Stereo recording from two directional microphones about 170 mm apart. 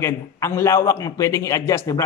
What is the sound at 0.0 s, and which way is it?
A man's voice, 15° left (ahead or behind).